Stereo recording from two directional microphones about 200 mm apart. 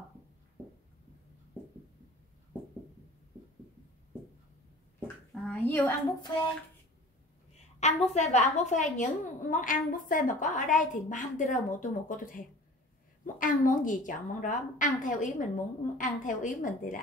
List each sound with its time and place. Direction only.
5.0 s a child's voice: 5° left (ahead or behind)
7.8 s a woman's voice: 35° left (ahead or behind)